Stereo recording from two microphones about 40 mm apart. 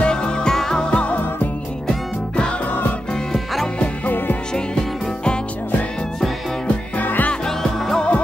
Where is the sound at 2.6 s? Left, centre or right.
Left.